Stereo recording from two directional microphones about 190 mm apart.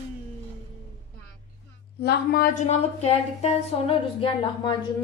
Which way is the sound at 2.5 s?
35° left (ahead or behind).